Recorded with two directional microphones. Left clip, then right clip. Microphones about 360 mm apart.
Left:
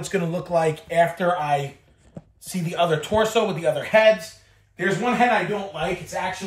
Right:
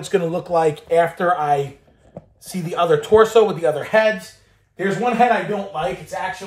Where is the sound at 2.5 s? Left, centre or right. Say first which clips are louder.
Right 4 dB; centre.